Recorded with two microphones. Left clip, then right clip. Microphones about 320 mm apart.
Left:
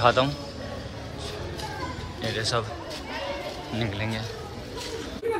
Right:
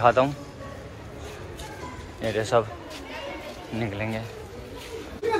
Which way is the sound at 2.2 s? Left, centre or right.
Centre.